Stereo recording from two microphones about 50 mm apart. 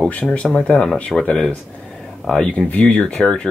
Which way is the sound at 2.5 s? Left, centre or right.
Left.